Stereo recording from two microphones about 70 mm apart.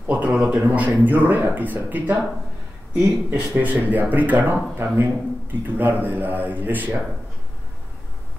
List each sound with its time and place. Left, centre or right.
0.1 s speech: centre